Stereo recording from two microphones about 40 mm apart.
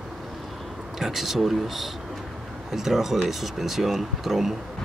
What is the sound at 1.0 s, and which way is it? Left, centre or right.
Speech, centre.